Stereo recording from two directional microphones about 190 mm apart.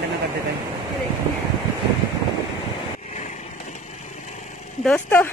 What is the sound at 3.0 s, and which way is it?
Vehicle, 40° left (ahead or behind).